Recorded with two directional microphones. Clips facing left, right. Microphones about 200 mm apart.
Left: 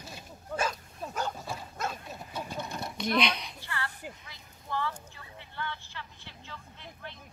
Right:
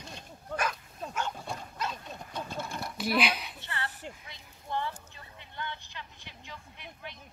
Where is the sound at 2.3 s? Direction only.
10° left (ahead or behind).